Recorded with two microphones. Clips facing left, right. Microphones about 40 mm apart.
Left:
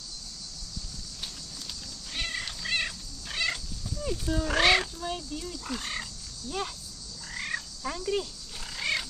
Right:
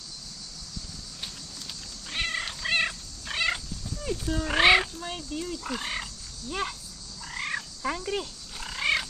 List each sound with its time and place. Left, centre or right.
2.0 s cat: right
4.1 s wild animals: centre
6.5 s speech: right
7.2 s frog: centre